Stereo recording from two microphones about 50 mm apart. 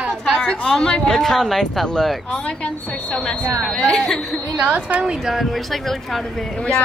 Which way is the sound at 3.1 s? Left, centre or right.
Left.